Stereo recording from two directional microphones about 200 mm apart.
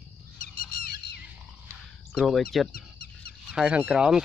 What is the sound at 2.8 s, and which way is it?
Goose, 50° left (ahead or behind).